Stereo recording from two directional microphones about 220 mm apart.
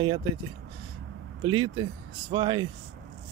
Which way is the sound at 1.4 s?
20° right (ahead or behind).